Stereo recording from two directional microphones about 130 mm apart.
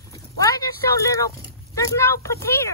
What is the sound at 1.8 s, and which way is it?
Speech, 20° left (ahead or behind).